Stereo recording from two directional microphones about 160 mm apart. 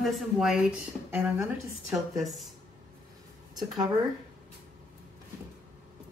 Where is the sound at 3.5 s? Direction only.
25° right (ahead or behind).